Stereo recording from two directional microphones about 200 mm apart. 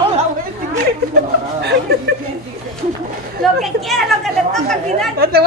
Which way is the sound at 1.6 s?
55° right (ahead or behind).